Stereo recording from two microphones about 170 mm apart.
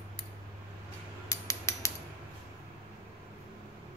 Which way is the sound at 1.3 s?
15° left (ahead or behind).